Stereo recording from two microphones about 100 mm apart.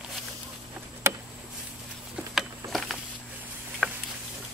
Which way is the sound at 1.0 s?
25° right (ahead or behind).